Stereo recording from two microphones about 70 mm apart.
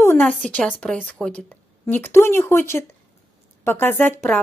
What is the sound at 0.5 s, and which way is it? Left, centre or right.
A woman's voice, centre.